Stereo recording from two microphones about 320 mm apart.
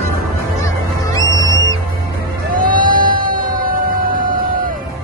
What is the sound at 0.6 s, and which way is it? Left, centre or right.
Music, centre.